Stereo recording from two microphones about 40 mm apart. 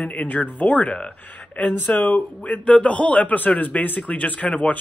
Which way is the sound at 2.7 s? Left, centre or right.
Left.